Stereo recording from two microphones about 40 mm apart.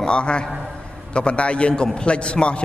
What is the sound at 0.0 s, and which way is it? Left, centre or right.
A man's voice, left.